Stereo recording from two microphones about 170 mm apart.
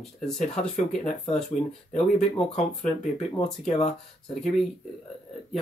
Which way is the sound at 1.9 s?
40° left (ahead or behind).